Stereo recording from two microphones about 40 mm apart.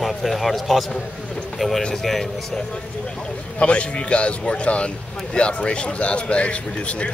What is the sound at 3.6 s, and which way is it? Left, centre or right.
Speech, left.